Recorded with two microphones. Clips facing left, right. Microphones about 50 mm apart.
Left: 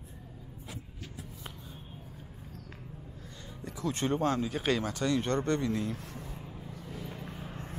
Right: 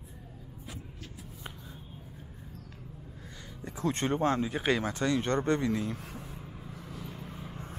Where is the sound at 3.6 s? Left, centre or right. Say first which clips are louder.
Right 2 dB; right.